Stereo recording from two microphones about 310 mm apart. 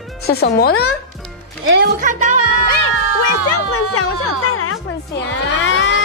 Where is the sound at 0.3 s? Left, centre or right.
Left.